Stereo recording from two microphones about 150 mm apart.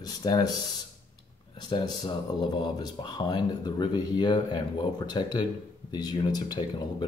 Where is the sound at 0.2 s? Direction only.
25° left (ahead or behind).